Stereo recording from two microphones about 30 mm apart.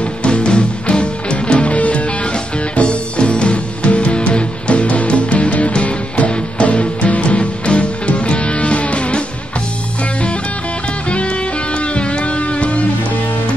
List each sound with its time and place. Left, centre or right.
0.0 s music: left
1.8 s music: left
2.7 s music: left
11.1 s music: left